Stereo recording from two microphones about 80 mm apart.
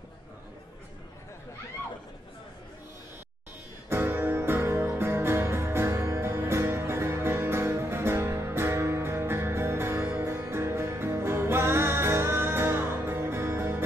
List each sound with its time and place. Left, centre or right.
3.9 s music: right